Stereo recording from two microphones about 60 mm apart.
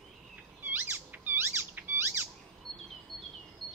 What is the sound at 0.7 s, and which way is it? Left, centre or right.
Squeak, right.